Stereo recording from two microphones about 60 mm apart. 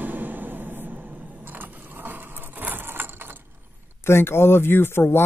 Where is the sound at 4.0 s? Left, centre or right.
Left.